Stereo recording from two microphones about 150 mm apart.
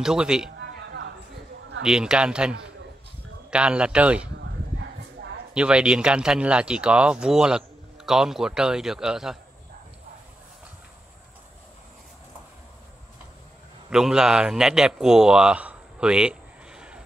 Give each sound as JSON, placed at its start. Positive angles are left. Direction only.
{"t": 0.0, "sound": "speech", "side_deg": -5}
{"t": 1.8, "sound": "a man's voice", "side_deg": -5}
{"t": 5.5, "sound": "speech", "side_deg": -5}
{"t": 13.8, "sound": "speech", "side_deg": -5}